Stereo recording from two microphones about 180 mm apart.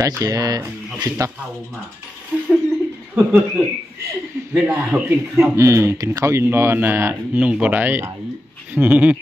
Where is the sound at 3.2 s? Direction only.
10° right (ahead or behind).